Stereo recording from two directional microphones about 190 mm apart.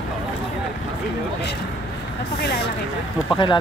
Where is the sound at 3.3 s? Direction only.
25° left (ahead or behind).